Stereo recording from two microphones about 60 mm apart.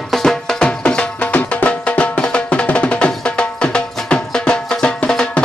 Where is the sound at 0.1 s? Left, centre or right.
Centre.